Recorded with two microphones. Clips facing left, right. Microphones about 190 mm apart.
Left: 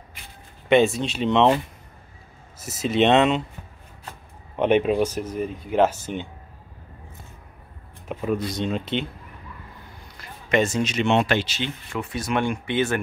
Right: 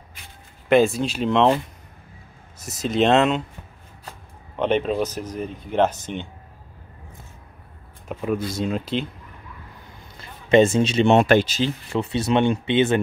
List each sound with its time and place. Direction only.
0.7 s speech: centre (ahead or behind)
2.6 s speech: 5° left (ahead or behind)
4.6 s speech: 10° left (ahead or behind)
8.1 s speech: centre (ahead or behind)
10.5 s speech: 25° right (ahead or behind)
11.1 s speech: 45° right (ahead or behind)
11.9 s speech: 25° right (ahead or behind)